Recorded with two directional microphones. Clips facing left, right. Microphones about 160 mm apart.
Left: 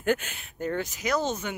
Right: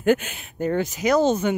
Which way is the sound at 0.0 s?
15° right (ahead or behind).